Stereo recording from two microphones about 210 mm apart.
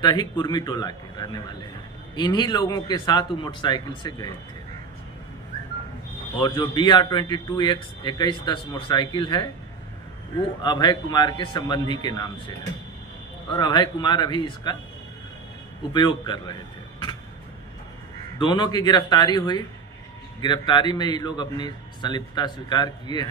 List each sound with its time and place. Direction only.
0.0 s a man's voice: 20° left (ahead or behind)
6.4 s a man's voice: 20° left (ahead or behind)
10.6 s a man's voice: 20° left (ahead or behind)
15.9 s a man's voice: 20° left (ahead or behind)
18.4 s a man's voice: 20° left (ahead or behind)